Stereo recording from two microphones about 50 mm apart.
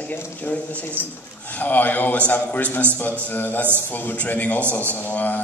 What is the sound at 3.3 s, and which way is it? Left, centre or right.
A man's voice, left.